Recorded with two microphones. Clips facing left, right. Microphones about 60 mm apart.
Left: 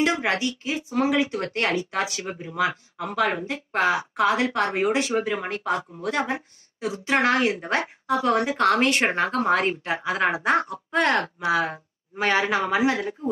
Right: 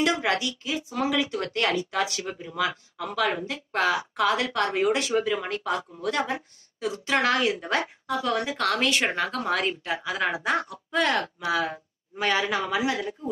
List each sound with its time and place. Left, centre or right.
0.0 s speech: left
11.3 s speech: left